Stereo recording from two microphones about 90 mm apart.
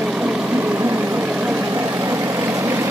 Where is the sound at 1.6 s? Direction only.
25° right (ahead or behind).